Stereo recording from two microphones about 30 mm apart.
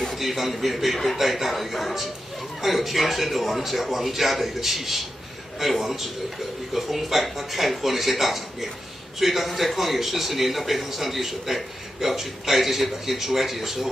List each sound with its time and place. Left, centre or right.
0.1 s a man's voice: centre